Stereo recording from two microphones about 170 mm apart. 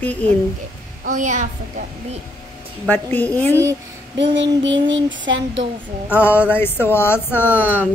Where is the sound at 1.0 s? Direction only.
50° right (ahead or behind).